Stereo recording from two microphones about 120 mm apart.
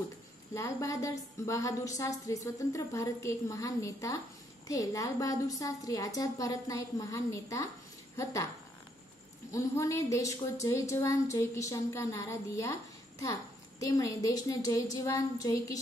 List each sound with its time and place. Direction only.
0.6 s a woman's voice: 25° left (ahead or behind)
9.5 s a woman's voice: 25° left (ahead or behind)